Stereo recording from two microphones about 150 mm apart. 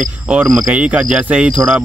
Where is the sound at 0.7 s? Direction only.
10° right (ahead or behind).